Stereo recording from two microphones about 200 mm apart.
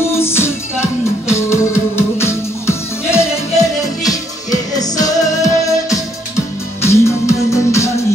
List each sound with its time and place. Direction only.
0.1 s music: 10° left (ahead or behind)
4.9 s music: 15° left (ahead or behind)